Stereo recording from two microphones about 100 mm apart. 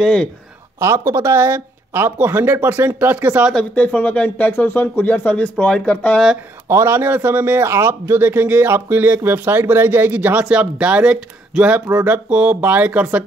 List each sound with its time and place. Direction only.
0.0 s speech: 5° left (ahead or behind)
0.7 s a man's voice: 25° right (ahead or behind)
3.5 s speech: 15° left (ahead or behind)
6.7 s a man's voice: 25° right (ahead or behind)